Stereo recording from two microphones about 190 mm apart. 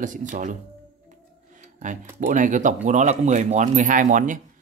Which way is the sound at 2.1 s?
45° right (ahead or behind).